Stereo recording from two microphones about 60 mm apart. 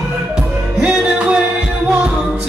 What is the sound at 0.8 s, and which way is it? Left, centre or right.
Music, centre.